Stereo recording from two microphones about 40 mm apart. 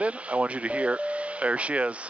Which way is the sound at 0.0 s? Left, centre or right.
Right.